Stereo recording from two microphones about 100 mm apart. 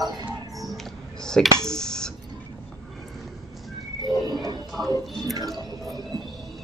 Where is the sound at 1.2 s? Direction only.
5° left (ahead or behind).